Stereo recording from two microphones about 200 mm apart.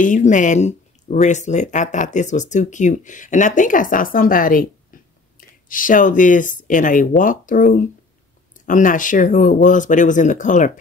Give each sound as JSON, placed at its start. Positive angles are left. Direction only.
{"t": 0.0, "sound": "speech", "side_deg": 40}